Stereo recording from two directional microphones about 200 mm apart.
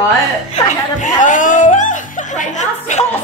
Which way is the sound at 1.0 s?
40° left (ahead or behind).